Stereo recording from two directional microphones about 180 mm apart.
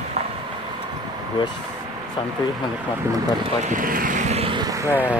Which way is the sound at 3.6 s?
50° right (ahead or behind).